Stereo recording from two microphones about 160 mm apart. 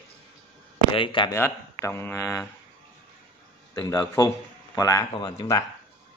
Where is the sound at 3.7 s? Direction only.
20° left (ahead or behind).